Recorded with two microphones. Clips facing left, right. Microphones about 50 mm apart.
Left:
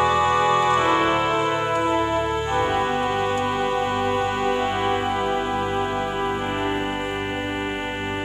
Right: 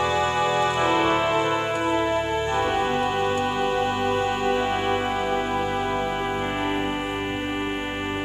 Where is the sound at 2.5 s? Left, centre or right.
Centre.